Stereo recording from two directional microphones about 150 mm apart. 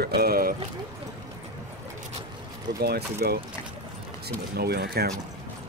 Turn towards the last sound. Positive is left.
turn(degrees=-90)